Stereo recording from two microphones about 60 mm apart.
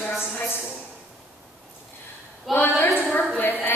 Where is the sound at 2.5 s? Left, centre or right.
Left.